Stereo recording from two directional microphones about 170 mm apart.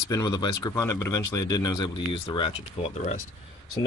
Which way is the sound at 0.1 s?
25° left (ahead or behind).